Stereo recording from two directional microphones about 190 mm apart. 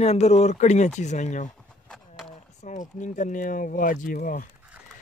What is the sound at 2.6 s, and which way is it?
Speech, 40° left (ahead or behind).